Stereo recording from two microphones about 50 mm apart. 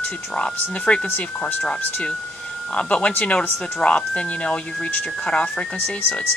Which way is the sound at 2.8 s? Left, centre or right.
Left.